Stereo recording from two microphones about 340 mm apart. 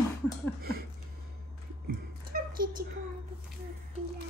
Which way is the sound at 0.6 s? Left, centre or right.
Right.